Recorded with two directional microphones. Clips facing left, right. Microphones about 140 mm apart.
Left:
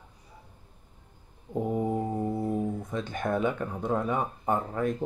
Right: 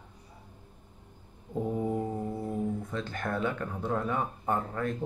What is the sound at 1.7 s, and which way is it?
Mantra, 15° left (ahead or behind).